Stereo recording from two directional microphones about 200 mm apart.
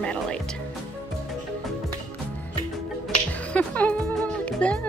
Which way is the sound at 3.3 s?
5° left (ahead or behind).